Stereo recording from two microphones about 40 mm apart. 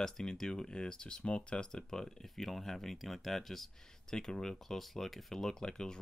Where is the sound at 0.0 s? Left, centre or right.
Centre.